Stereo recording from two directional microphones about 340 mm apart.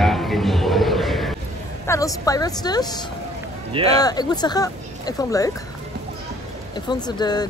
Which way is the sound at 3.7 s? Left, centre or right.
Centre.